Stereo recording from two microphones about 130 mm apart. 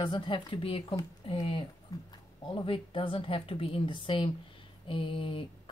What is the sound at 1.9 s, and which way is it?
Speech, 25° left (ahead or behind).